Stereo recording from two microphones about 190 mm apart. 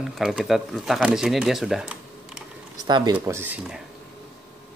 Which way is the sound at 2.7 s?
20° right (ahead or behind).